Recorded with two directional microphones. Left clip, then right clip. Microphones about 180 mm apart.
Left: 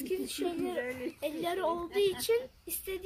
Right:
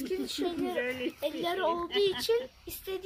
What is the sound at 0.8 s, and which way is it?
Speech, 45° right (ahead or behind).